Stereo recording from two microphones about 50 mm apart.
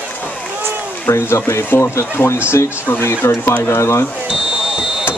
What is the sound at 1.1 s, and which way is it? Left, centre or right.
Speech, left.